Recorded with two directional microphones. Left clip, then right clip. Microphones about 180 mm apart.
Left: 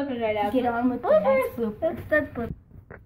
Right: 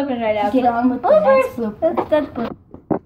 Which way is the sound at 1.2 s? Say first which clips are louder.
Right 8 dB; 35° left (ahead or behind).